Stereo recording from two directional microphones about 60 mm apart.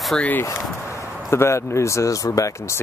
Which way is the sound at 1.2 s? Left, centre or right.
Left.